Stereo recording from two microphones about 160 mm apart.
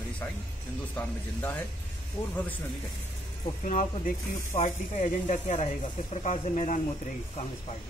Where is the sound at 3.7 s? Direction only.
50° left (ahead or behind).